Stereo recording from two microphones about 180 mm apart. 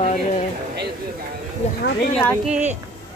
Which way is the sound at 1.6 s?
40° left (ahead or behind).